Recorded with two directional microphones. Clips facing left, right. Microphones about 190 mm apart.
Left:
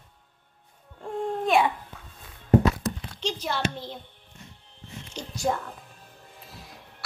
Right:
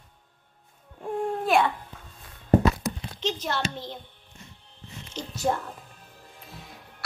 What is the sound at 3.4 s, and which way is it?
Speech, 10° left (ahead or behind).